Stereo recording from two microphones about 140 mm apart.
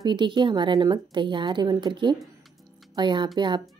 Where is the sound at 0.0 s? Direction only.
35° right (ahead or behind).